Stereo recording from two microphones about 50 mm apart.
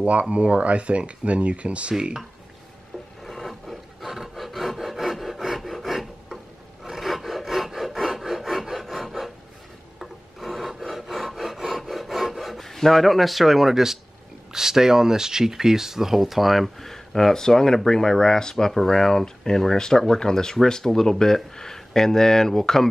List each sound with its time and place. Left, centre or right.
0.0 s speech: right
3.3 s rub: centre
9.9 s filing: centre
14.5 s speech: centre